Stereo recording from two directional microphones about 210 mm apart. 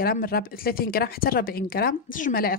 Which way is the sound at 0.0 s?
45° left (ahead or behind).